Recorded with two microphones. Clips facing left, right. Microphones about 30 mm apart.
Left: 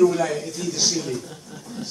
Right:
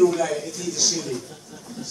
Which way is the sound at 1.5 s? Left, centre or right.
Centre.